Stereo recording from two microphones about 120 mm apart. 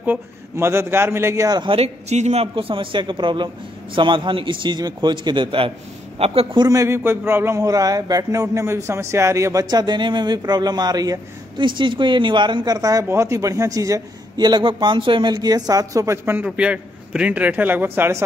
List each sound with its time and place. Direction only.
0.0 s a man's voice: 20° right (ahead or behind)
1.6 s speech: 55° right (ahead or behind); by 2.4 s 70° right (ahead or behind)
2.4 s a man's voice: 50° right (ahead or behind)
6.6 s a man's voice: 25° right (ahead or behind); by 15.3 s 45° right (ahead or behind)
15.3 s a man's voice: 30° right (ahead or behind)
16.4 s a man's voice: 10° right (ahead or behind)